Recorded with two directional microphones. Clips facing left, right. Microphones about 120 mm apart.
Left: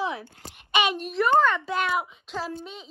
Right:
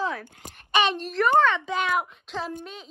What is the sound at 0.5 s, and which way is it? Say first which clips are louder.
A woman's voice: right 1 dB; 10° left (ahead or behind).